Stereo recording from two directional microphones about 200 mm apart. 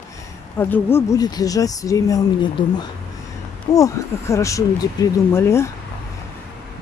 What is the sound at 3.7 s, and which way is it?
Speech, 15° left (ahead or behind).